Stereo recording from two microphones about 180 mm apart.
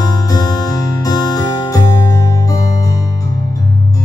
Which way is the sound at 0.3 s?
20° left (ahead or behind).